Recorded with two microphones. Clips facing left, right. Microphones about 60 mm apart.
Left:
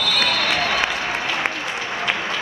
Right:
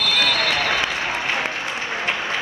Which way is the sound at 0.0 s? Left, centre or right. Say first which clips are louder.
Even; right.